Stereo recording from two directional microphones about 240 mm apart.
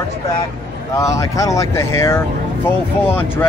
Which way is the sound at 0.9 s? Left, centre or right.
Centre.